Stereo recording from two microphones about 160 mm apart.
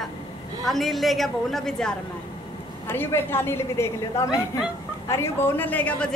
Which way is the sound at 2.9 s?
15° left (ahead or behind).